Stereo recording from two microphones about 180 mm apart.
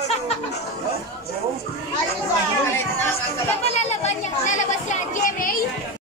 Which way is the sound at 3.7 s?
40° left (ahead or behind).